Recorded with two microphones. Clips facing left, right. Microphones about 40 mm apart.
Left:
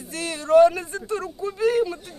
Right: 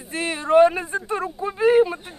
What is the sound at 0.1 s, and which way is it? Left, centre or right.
Speech, right.